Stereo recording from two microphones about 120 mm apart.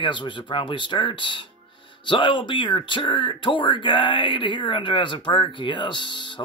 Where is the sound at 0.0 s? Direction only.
40° left (ahead or behind).